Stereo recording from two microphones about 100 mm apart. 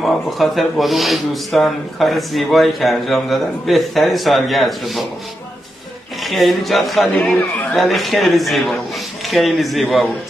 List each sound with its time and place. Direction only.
0.0 s speech: centre (ahead or behind)
6.2 s speech: centre (ahead or behind)
7.2 s a man's voice: 10° left (ahead or behind)